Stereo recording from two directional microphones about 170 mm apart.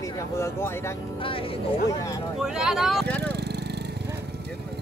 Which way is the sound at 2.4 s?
5° right (ahead or behind).